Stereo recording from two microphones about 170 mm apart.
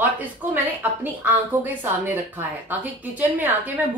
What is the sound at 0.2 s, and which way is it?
Speech, 10° right (ahead or behind).